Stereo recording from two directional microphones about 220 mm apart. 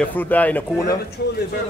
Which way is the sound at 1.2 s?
45° left (ahead or behind).